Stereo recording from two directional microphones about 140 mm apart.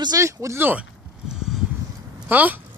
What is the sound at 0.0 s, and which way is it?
Speech, 25° right (ahead or behind).